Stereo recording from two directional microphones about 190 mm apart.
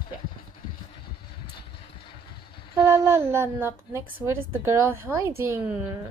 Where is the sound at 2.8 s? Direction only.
15° right (ahead or behind).